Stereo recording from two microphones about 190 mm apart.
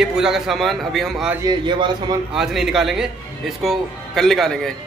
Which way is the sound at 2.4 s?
Centre (ahead or behind).